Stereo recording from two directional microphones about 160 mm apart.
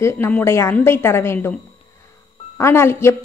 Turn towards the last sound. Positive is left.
turn(degrees=15)  # may be behind; listen again after turning